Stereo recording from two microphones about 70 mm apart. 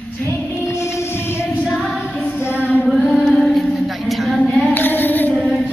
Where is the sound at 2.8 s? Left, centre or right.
Centre.